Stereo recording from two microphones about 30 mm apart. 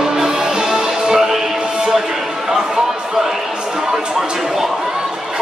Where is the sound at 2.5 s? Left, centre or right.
Centre.